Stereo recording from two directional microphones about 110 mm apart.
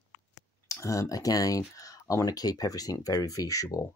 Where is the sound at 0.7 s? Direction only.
30° left (ahead or behind).